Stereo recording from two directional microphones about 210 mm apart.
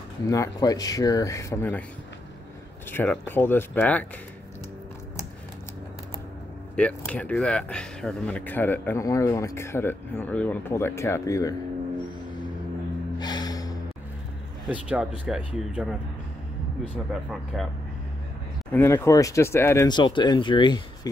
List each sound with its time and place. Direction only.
0.3 s speech: 15° left (ahead or behind)
2.9 s speech: 10° left (ahead or behind)
6.7 s speech: 5° left (ahead or behind)
13.2 s gasp: 20° left (ahead or behind)
14.7 s speech: 5° right (ahead or behind)
17.1 s speech: centre (ahead or behind)
18.7 s speech: 10° left (ahead or behind)